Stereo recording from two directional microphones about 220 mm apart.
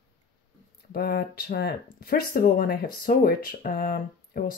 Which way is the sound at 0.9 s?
45° left (ahead or behind).